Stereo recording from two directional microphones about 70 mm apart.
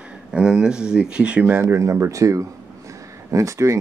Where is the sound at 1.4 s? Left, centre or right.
Right.